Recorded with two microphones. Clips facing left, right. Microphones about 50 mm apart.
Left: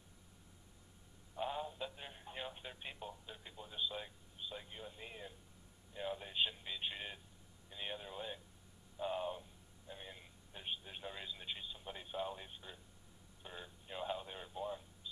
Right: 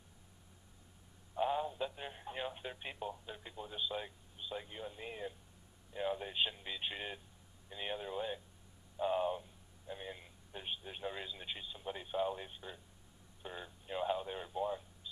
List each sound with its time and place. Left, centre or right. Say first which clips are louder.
1.3 s radio: right 6 dB; centre
7.7 s a sound: right 5 dB; centre
13.4 s telephone: right 4 dB; centre